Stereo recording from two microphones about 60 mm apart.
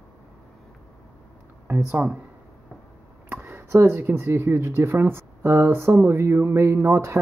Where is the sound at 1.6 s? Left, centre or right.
Right.